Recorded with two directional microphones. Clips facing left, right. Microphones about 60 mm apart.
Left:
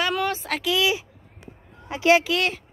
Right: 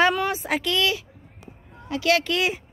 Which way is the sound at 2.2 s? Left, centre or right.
Centre.